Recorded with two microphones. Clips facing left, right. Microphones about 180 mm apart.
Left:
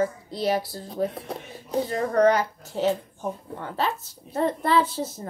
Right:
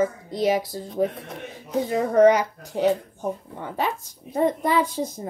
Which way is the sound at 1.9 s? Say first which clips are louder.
Right 4 dB; 15° right (ahead or behind).